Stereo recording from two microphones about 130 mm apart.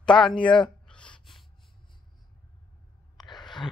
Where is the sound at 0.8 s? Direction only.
10° left (ahead or behind).